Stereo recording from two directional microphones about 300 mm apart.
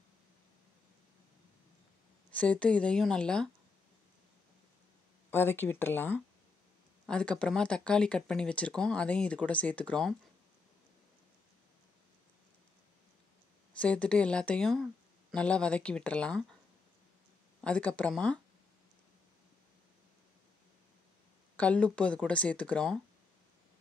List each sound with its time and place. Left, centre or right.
2.3 s speech: centre
5.3 s speech: centre
13.7 s speech: centre
17.6 s speech: centre
21.5 s speech: centre